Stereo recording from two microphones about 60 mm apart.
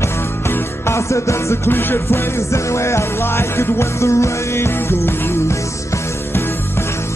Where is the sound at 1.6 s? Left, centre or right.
Left.